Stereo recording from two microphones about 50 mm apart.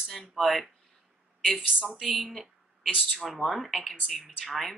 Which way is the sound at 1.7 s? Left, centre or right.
Centre.